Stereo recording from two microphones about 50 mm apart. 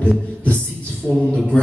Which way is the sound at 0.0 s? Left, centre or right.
Left.